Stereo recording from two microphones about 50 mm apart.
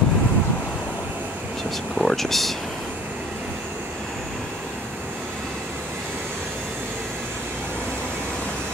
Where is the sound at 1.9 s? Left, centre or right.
Centre.